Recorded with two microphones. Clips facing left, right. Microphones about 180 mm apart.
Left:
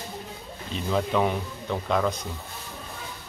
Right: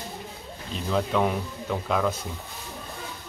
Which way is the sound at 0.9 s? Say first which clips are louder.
Even; centre (ahead or behind).